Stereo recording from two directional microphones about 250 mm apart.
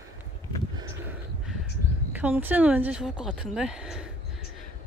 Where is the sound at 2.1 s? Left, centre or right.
Centre.